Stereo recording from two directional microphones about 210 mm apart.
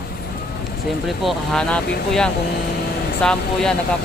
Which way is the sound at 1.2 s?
5° left (ahead or behind).